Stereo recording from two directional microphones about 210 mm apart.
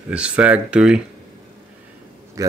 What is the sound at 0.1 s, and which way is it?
Speech, 5° right (ahead or behind).